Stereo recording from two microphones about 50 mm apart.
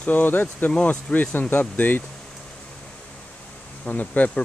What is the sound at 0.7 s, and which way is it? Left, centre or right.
Speech, left.